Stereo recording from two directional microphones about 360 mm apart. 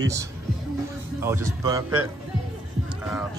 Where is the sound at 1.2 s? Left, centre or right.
Centre.